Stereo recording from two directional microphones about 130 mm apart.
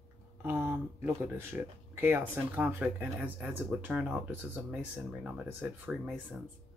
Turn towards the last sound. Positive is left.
turn(degrees=-10)  # may be behind; listen again after turning